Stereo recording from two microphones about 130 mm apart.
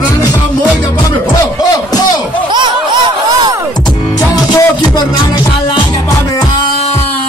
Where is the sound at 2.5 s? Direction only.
35° right (ahead or behind).